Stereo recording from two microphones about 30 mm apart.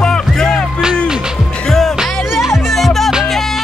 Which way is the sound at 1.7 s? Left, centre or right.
Centre.